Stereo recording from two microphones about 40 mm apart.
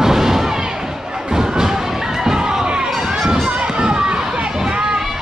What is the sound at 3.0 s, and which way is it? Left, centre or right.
Run, centre.